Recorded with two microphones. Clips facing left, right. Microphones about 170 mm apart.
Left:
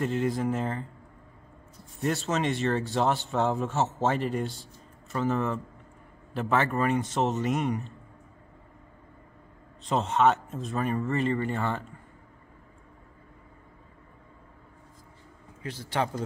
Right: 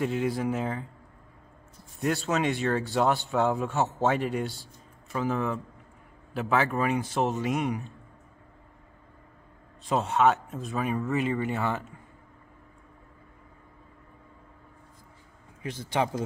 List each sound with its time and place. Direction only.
0.0 s speech: 5° right (ahead or behind)
2.0 s speech: centre (ahead or behind)
9.8 s speech: centre (ahead or behind)
15.6 s a man's voice: 15° right (ahead or behind)